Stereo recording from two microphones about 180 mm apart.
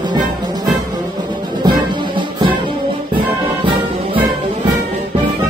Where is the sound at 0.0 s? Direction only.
25° right (ahead or behind).